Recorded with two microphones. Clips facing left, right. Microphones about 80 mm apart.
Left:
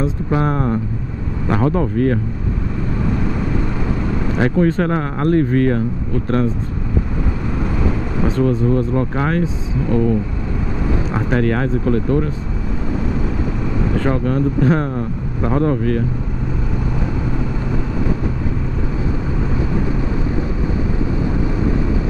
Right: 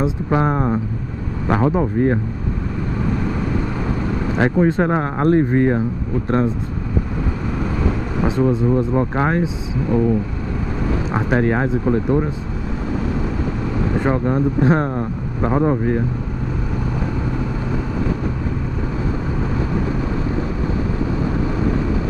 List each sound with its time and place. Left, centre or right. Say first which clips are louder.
0.0 s speech: even; centre
4.4 s speech: even; centre
8.2 s speech: even; centre
9.4 s speech: left 1 dB; centre
11.1 s speech: right 1 dB; centre
13.9 s speech: even; centre